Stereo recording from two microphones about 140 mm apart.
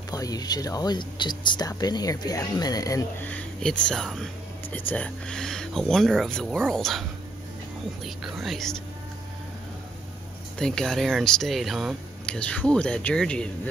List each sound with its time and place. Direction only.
0.1 s speech: 25° left (ahead or behind)
3.2 s speech: 10° left (ahead or behind)
10.6 s speech: 5° left (ahead or behind)